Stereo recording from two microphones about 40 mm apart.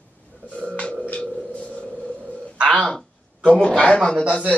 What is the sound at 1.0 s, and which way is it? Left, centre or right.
Music, left.